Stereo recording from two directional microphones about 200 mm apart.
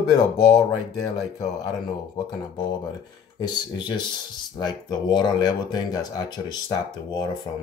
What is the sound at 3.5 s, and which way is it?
Speech, 20° left (ahead or behind).